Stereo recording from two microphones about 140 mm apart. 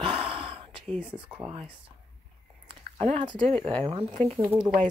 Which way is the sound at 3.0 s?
55° right (ahead or behind).